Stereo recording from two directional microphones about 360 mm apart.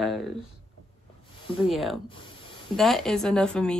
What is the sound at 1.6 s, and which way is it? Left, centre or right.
Speech, centre.